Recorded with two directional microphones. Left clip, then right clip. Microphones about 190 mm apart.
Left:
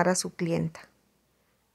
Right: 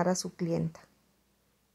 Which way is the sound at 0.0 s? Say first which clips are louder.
Left 5 dB; 20° left (ahead or behind).